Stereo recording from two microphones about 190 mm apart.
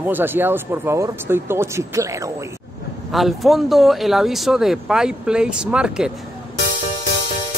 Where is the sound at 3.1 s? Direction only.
Centre (ahead or behind).